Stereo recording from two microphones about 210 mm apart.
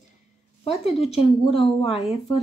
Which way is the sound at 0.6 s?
30° left (ahead or behind).